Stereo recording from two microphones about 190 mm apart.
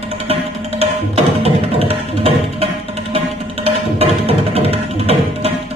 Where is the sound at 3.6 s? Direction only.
30° right (ahead or behind).